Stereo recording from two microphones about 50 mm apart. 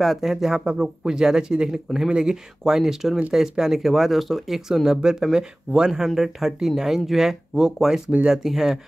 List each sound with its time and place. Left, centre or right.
0.0 s speech: centre